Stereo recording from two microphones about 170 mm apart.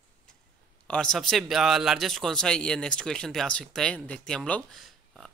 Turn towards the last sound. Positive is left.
turn(degrees=0)  # may be behind; listen again after turning